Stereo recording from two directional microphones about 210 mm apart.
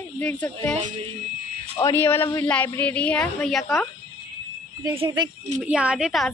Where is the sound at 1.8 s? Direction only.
10° left (ahead or behind).